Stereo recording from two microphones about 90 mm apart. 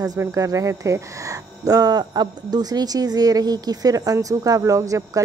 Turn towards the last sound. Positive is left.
turn(degrees=-35)  # may be behind; listen again after turning